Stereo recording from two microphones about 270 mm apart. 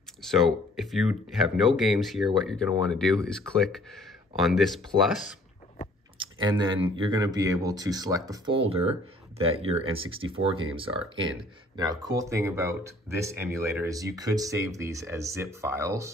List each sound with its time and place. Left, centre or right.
0.7 s speech: centre
6.1 s speech: centre